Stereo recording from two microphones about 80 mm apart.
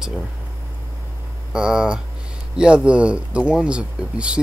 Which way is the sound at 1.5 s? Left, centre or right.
Centre.